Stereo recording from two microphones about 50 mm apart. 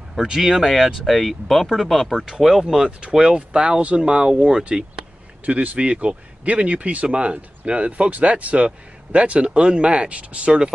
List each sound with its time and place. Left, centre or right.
0.1 s speech: centre
2.1 s speech: centre
5.4 s speech: right